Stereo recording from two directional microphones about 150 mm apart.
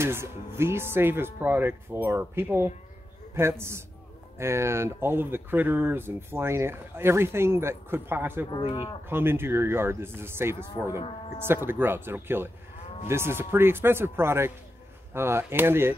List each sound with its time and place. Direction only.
0.0 s speech: 15° right (ahead or behind)
8.5 s speech: 30° left (ahead or behind)
9.1 s speech: 15° right (ahead or behind)